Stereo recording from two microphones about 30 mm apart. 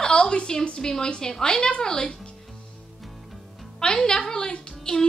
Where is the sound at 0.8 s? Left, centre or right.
Centre.